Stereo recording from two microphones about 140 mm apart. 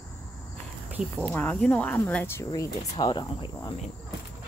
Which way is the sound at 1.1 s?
10° left (ahead or behind).